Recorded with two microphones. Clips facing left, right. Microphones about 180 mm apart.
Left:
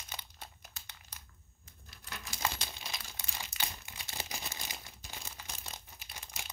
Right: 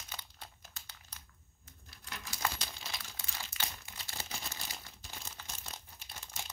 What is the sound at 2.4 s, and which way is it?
Crumpling, 20° left (ahead or behind).